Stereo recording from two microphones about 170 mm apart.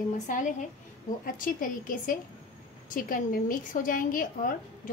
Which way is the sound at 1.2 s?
55° left (ahead or behind).